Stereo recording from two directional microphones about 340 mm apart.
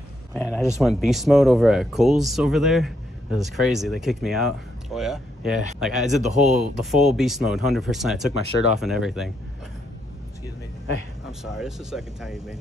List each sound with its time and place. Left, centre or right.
0.3 s a man's voice: centre
6.0 s a man's voice: centre
6.7 s speech: centre
11.5 s speech: centre